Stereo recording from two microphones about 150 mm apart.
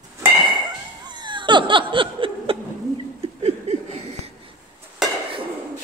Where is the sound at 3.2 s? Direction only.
45° right (ahead or behind).